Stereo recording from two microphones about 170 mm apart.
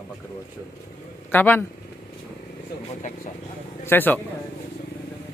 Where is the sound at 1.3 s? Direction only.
10° left (ahead or behind).